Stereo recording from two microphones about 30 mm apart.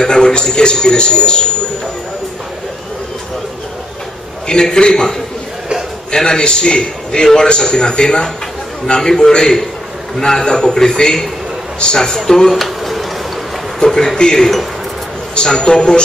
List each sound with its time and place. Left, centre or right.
0.0 s a sound: left
0.5 s a man's voice: left
4.5 s a man's voice: left
6.1 s a man's voice: left
12.4 s a sound: centre
13.7 s a man's voice: centre